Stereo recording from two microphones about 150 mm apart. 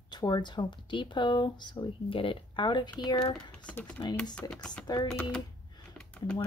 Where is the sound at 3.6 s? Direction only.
10° left (ahead or behind).